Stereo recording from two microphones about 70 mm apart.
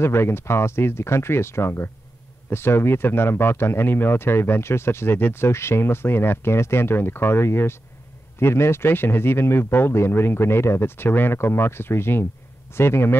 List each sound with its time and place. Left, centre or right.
0.0 s speech: left